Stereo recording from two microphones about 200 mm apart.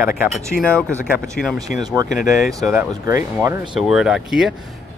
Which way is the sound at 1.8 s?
20° right (ahead or behind).